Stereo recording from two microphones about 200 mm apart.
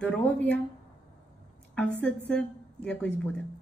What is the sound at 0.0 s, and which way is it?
Speech, 5° left (ahead or behind).